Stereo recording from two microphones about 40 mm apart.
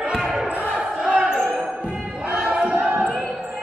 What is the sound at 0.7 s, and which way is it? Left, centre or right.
Basketball bounce, right.